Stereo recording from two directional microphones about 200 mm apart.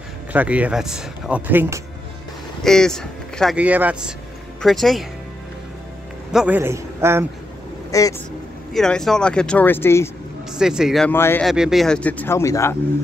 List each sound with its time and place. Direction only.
0.3 s speech: 5° right (ahead or behind)
2.6 s speech: centre (ahead or behind)
6.3 s speech: 5° right (ahead or behind)
7.9 s speech: 15° left (ahead or behind)
8.7 s speech: centre (ahead or behind)
10.5 s speech: 5° right (ahead or behind)
11.1 s speech: 10° left (ahead or behind)
11.4 s speech: centre (ahead or behind); by 12.7 s 15° left (ahead or behind)